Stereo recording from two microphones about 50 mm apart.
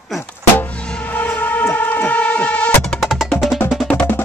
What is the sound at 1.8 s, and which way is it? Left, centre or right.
Vehicle, left.